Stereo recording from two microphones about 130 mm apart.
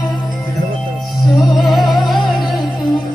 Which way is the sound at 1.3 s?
Centre (ahead or behind).